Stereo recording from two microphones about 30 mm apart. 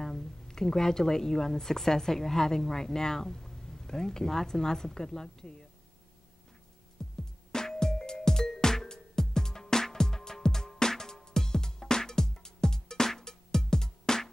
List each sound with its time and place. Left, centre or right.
0.0 s a woman's voice: centre
7.0 s music: centre